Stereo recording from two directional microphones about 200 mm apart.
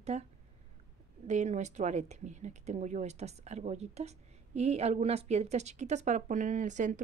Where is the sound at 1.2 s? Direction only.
35° right (ahead or behind).